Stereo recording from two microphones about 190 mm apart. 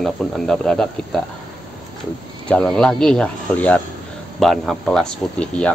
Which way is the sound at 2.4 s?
5° left (ahead or behind).